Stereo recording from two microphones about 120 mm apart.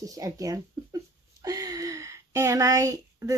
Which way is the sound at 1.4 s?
30° right (ahead or behind).